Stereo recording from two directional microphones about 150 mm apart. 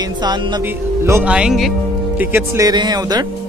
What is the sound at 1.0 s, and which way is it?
Music, 15° right (ahead or behind).